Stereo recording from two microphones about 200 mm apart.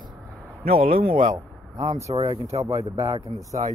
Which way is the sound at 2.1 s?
25° right (ahead or behind).